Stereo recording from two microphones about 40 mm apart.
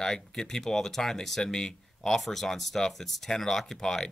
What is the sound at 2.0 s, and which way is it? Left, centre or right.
Speech, centre.